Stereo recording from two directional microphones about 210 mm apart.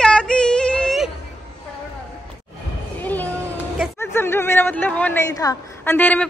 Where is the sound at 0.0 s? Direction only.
5° left (ahead or behind).